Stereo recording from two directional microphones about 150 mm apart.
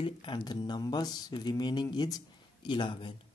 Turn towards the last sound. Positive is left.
turn(degrees=35)  # may be behind; listen again after turning